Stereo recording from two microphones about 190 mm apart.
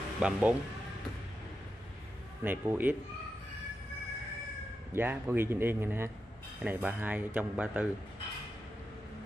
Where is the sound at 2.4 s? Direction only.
10° right (ahead or behind).